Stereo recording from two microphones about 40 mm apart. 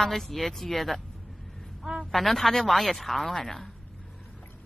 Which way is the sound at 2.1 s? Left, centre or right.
Centre.